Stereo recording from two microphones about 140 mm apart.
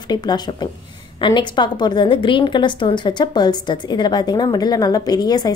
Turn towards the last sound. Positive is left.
turn(degrees=30)  # may be behind; listen again after turning